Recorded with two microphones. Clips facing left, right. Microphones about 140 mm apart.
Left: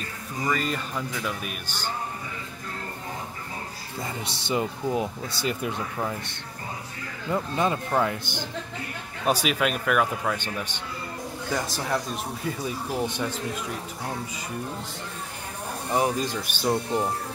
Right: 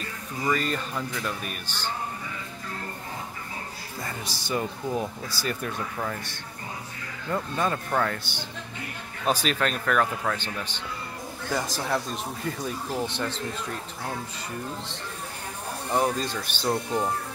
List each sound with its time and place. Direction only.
0.5 s speech: centre (ahead or behind)
4.0 s a man's voice: 25° left (ahead or behind)
11.5 s speech: centre (ahead or behind)
15.9 s a man's voice: 10° left (ahead or behind)